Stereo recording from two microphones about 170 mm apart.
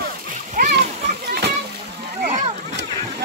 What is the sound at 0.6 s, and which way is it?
Splash, 60° right (ahead or behind).